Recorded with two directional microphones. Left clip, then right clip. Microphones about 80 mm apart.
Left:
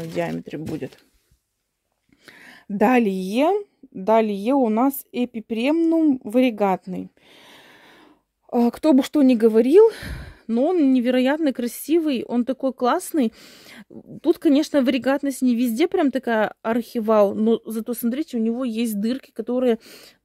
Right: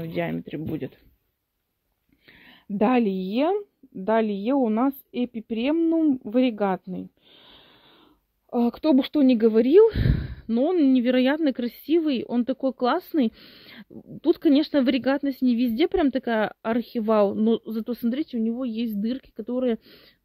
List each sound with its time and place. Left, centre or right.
0.0 s speech: left
0.7 s speech: left
2.2 s a sound: left
2.7 s speech: left
8.7 s speech: left